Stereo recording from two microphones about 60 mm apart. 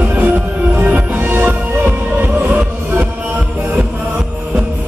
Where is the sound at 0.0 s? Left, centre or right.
Right.